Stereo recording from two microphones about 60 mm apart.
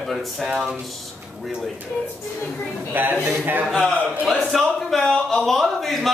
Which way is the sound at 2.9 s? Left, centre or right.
Right.